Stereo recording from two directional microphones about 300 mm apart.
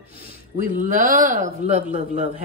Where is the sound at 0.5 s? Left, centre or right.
Right.